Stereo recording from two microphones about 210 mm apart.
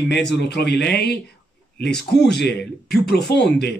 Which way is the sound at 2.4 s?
50° left (ahead or behind).